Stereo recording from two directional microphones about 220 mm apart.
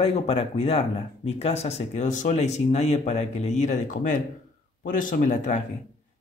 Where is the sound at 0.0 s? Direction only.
25° left (ahead or behind).